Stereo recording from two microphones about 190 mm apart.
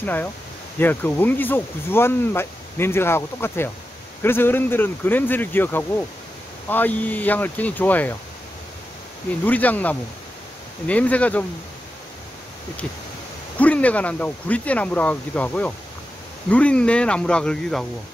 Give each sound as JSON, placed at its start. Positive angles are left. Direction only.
{"t": 0.0, "sound": "speech", "side_deg": 10}
{"t": 9.4, "sound": "speech", "side_deg": 10}
{"t": 13.6, "sound": "speech", "side_deg": 5}